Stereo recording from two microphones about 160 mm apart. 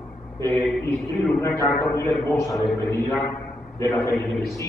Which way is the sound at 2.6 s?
15° left (ahead or behind).